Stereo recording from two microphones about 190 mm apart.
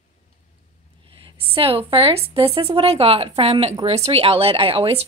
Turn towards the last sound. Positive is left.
turn(degrees=-30)  # may be behind; listen again after turning